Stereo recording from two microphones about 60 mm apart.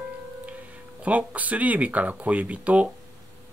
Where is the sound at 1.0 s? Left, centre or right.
Right.